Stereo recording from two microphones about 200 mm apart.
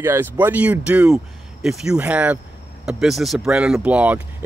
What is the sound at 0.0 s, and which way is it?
Speech, 10° right (ahead or behind).